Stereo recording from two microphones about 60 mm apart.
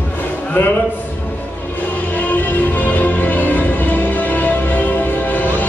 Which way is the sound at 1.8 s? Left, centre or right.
Left.